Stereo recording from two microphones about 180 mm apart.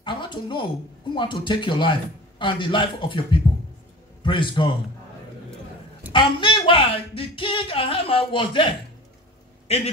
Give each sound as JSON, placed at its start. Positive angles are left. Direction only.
{"t": 0.0, "sound": "a sound", "side_deg": 25}
{"t": 1.1, "sound": "a man's voice", "side_deg": 25}
{"t": 6.1, "sound": "speech", "side_deg": 25}